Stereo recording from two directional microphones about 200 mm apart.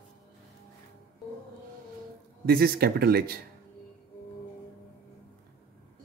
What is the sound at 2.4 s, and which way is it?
Speech, 50° right (ahead or behind).